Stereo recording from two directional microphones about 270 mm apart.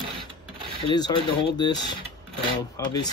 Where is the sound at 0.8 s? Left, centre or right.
Centre.